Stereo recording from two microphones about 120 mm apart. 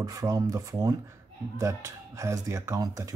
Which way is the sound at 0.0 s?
30° right (ahead or behind).